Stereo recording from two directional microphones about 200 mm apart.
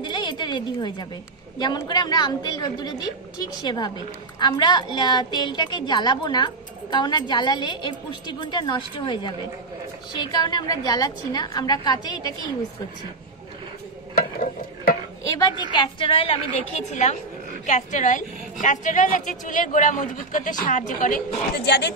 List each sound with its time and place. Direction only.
0.0 s a woman's voice: 20° left (ahead or behind)
14.1 s stir: 45° left (ahead or behind)
15.2 s a woman's voice: 20° left (ahead or behind); by 21.9 s 55° left (ahead or behind)